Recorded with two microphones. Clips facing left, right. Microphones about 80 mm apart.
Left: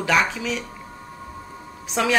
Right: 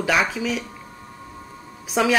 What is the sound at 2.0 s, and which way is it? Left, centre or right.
Speech, centre.